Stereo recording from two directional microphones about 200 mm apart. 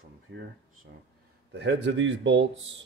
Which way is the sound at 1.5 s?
55° right (ahead or behind).